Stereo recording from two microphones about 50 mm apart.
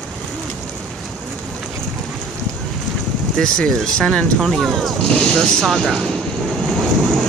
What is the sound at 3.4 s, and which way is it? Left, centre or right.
Speech, centre.